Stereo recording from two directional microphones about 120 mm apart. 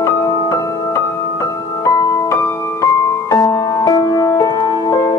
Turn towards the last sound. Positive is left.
turn(degrees=30)  # may be behind; listen again after turning